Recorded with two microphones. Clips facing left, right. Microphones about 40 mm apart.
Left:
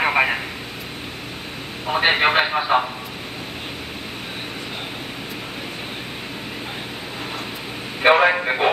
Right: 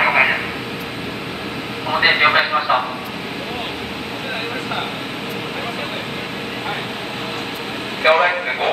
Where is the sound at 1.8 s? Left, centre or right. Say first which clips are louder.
Right 3 dB; centre.